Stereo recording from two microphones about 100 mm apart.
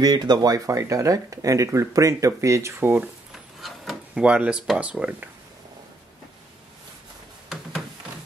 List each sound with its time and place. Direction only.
0.0 s speech: 45° right (ahead or behind)
3.6 s rub: centre (ahead or behind)
4.2 s speech: 10° right (ahead or behind)